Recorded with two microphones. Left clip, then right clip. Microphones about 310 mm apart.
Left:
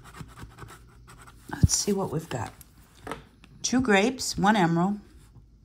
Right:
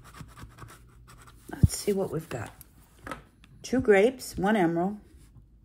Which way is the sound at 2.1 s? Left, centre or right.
Centre.